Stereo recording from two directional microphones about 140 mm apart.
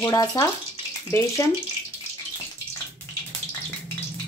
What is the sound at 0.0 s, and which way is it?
Speech, 25° left (ahead or behind).